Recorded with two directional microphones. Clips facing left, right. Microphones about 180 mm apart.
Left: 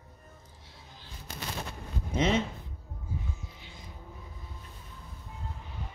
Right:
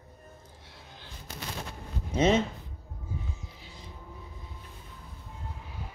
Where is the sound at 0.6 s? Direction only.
65° right (ahead or behind).